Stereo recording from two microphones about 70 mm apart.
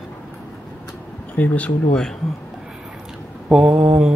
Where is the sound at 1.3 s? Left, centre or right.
Left.